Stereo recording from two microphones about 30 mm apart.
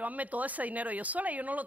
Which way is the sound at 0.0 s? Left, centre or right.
Right.